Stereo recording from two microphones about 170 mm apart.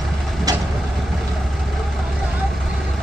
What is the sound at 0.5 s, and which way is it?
Vehicle, 20° right (ahead or behind).